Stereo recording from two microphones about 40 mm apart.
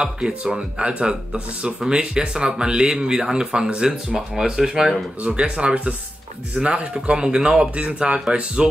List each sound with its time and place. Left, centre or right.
0.0 s speech: right
4.4 s speech: centre
5.2 s speech: right
7.7 s speech: right